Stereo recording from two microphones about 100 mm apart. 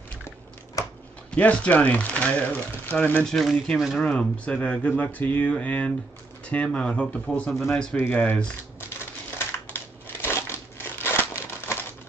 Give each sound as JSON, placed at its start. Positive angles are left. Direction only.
{"t": 1.3, "sound": "speech", "side_deg": 10}
{"t": 3.3, "sound": "speech", "side_deg": 5}
{"t": 10.2, "sound": "crumpling", "side_deg": 25}